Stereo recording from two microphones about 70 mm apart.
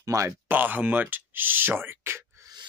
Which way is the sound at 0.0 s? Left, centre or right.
Right.